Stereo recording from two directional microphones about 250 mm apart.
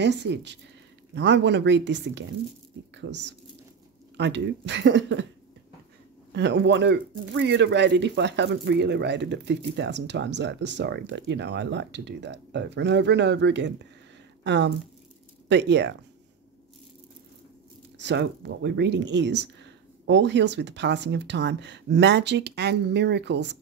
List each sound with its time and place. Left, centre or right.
0.0 s speech: right
6.3 s speech: right
17.9 s speech: right